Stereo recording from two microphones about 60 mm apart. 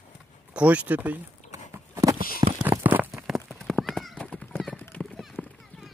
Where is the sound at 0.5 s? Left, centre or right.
Right.